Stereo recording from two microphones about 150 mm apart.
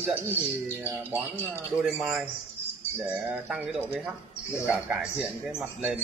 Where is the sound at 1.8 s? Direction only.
5° right (ahead or behind).